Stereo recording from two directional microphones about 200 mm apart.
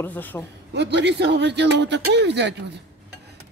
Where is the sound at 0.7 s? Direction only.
60° right (ahead or behind).